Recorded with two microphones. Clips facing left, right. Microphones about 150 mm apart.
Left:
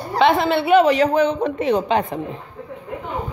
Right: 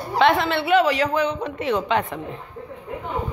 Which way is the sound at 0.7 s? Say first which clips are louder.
Left 4 dB; 20° left (ahead or behind).